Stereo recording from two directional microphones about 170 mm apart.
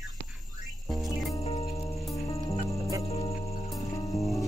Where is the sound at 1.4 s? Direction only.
35° left (ahead or behind).